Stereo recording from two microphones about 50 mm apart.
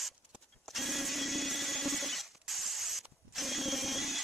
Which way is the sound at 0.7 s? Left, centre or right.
Centre.